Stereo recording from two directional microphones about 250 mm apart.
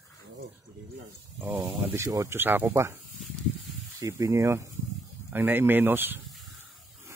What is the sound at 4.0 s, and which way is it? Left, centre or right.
Speech, centre.